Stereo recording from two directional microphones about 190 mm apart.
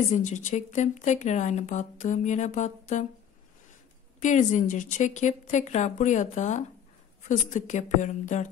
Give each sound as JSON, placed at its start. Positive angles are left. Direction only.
{"t": 0.1, "sound": "speech", "side_deg": 40}
{"t": 4.2, "sound": "speech", "side_deg": 40}